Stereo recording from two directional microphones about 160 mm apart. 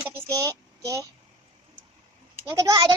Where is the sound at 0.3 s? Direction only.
20° right (ahead or behind).